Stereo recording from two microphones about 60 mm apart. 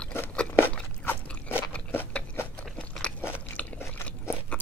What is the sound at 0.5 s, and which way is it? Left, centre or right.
Crunch, left.